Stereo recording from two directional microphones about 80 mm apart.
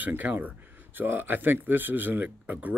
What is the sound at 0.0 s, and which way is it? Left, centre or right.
Speech, right.